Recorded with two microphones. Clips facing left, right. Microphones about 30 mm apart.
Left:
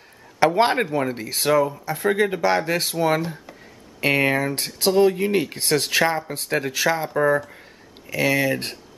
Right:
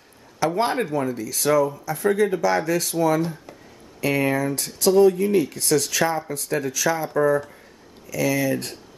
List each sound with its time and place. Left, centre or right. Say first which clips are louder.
0.6 s speech: left 3 dB; left
1.5 s speech: even; left